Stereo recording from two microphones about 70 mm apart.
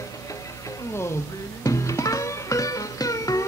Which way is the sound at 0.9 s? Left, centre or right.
Left.